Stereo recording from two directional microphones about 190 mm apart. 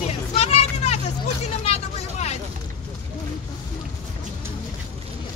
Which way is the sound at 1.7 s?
35° left (ahead or behind).